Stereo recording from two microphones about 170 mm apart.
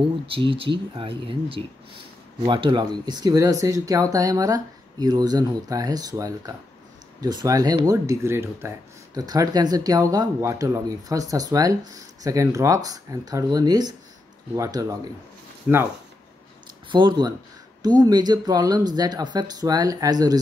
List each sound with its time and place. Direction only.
0.3 s speech: 30° right (ahead or behind)
16.9 s speech: 30° right (ahead or behind)